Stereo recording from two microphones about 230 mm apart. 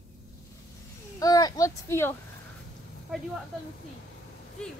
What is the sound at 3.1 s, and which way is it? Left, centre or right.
Speech, centre.